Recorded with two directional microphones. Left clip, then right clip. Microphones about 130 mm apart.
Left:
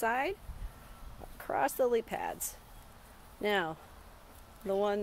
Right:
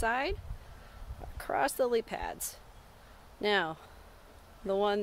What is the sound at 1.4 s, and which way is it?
Speech, 25° right (ahead or behind).